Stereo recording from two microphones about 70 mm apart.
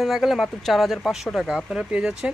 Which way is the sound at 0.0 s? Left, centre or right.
Centre.